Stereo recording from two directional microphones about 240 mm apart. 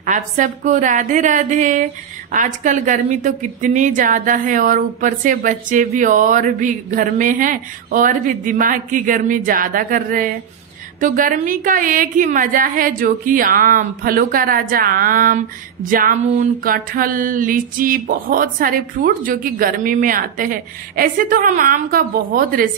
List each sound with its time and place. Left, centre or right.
0.0 s a woman's voice: right